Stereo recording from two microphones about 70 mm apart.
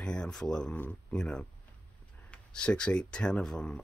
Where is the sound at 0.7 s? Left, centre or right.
Left.